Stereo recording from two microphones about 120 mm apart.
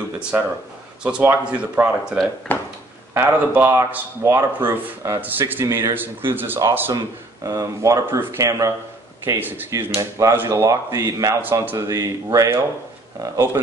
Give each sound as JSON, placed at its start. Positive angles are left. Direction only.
{"t": 0.3, "sound": "speech", "side_deg": -15}
{"t": 2.5, "sound": "a sound", "side_deg": 15}
{"t": 3.2, "sound": "speech", "side_deg": -20}
{"t": 7.4, "sound": "speech", "side_deg": -30}
{"t": 9.9, "sound": "speech", "side_deg": -25}
{"t": 11.4, "sound": "speech", "side_deg": -15}